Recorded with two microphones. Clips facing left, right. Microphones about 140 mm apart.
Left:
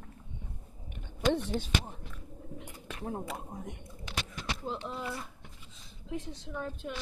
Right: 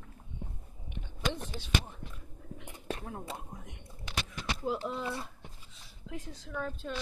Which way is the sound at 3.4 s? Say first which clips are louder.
Left 5 dB; 40° left (ahead or behind).